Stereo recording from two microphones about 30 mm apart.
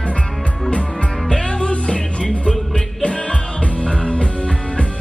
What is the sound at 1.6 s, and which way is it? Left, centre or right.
Music, left.